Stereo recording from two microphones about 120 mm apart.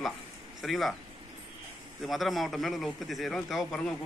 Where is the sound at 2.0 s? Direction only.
Centre (ahead or behind).